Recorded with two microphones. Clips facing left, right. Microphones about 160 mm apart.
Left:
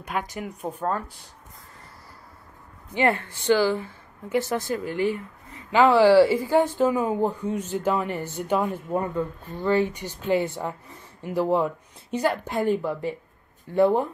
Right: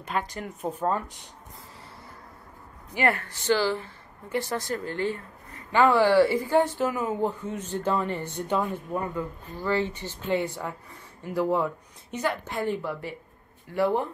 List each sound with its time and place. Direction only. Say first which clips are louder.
0.0 s speech: left 1 dB; 15° left (ahead or behind)
0.5 s speech: even; 5° right (ahead or behind)
2.9 s a woman's voice: left 3 dB; 20° left (ahead or behind)
8.9 s speech: left 6 dB; 25° left (ahead or behind)
10.4 s a woman's voice: left 3 dB; 25° left (ahead or behind)
12.4 s a woman's voice: left 5 dB; 15° left (ahead or behind)